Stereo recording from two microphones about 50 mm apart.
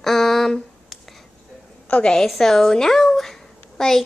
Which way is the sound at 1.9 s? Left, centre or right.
Left.